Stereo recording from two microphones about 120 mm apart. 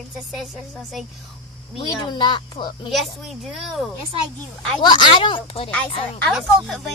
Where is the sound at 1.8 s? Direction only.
40° left (ahead or behind).